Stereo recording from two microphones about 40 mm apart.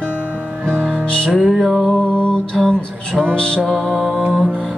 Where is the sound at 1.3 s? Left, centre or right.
Centre.